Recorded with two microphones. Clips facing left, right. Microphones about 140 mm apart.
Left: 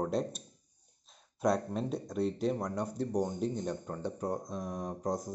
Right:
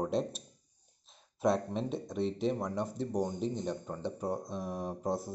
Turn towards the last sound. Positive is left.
turn(degrees=-5)  # may be behind; listen again after turning